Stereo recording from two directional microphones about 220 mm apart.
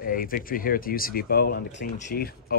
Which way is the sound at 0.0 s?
40° left (ahead or behind).